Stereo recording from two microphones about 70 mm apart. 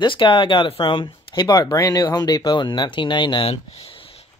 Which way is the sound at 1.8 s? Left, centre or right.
Left.